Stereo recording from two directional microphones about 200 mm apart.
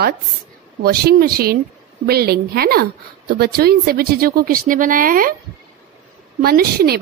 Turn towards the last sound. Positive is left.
turn(degrees=-50)  # may be behind; listen again after turning